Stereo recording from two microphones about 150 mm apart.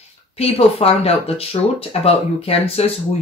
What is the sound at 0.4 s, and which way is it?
Speech, 40° left (ahead or behind).